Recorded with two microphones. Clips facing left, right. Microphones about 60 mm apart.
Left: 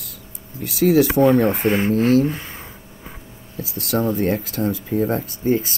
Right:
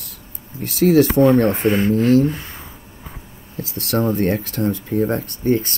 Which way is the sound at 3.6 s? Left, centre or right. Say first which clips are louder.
Right 1 dB; centre.